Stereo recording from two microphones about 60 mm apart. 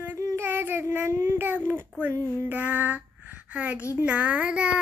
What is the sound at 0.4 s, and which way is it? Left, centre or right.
Child singing, right.